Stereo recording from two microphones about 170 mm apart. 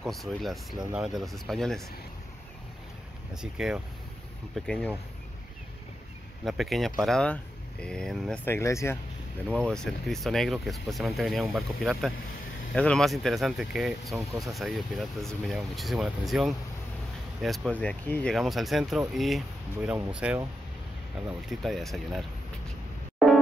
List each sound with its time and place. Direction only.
0.0 s speech: centre (ahead or behind)
3.3 s speech: 5° right (ahead or behind)
6.4 s speech: centre (ahead or behind)
8.5 s speech: 15° left (ahead or behind)
9.5 s speech: 5° left (ahead or behind)
21.5 s speech: centre (ahead or behind)